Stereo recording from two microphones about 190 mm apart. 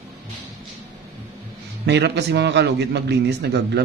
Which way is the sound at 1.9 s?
60° right (ahead or behind).